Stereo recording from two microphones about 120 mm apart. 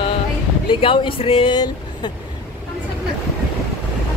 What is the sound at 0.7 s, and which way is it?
Speech, 45° left (ahead or behind).